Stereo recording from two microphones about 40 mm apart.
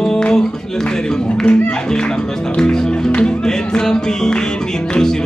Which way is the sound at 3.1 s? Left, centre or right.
Left.